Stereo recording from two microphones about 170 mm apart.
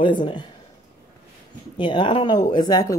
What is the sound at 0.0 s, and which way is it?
Speech, 30° left (ahead or behind).